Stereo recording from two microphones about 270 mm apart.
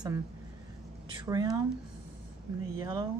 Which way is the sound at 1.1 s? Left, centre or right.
Centre.